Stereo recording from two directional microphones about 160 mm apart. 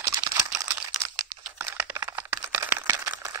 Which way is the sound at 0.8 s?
20° right (ahead or behind).